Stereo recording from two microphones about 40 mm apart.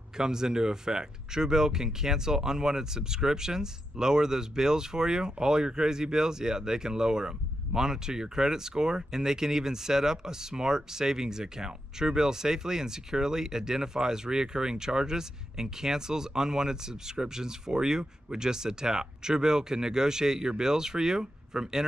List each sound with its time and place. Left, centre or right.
0.2 s speech: centre